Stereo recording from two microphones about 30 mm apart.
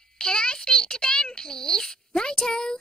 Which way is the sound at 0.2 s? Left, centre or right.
Left.